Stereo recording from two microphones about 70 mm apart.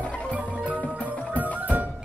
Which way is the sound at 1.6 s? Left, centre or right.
Right.